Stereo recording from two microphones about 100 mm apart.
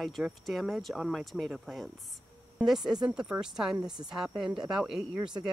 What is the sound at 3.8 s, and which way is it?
Speech, 45° right (ahead or behind).